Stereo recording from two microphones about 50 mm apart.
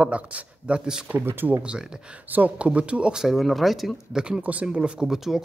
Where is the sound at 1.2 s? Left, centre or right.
Right.